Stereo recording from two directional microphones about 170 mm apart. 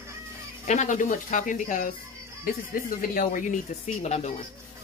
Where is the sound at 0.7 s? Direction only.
45° left (ahead or behind).